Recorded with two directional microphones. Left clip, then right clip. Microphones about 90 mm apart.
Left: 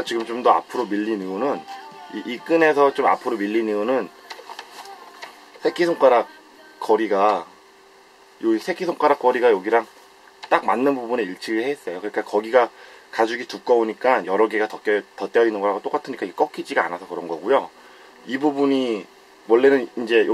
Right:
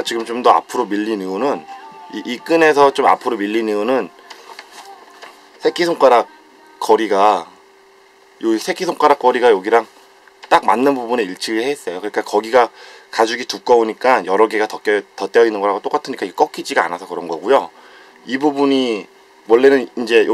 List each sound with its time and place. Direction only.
0.0 s a man's voice: 35° right (ahead or behind)
5.6 s a man's voice: 35° right (ahead or behind)